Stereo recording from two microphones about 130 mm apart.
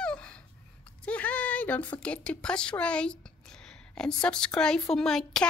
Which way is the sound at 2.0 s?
10° left (ahead or behind).